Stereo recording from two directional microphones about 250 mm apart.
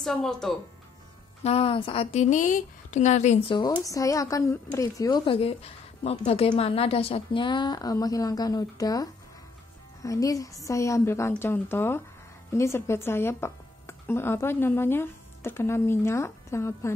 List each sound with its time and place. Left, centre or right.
0.0 s speech: centre
1.4 s a woman's voice: left